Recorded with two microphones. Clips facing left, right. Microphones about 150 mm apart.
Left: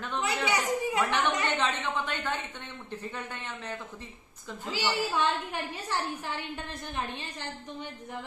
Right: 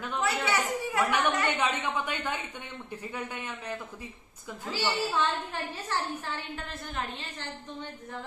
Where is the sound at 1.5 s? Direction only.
10° right (ahead or behind).